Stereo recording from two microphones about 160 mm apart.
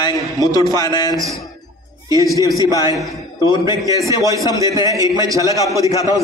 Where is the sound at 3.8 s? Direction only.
20° right (ahead or behind).